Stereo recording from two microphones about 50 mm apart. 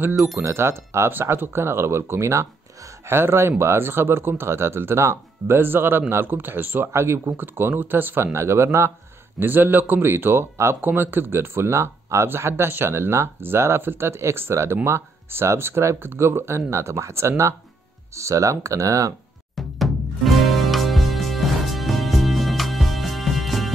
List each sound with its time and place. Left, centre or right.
0.4 s speech: right
3.1 s speech: right
6.9 s speech: right
7.3 s speech: right
8.3 s speech: right
9.4 s speech: right
18.1 s speech: right
19.5 s music: centre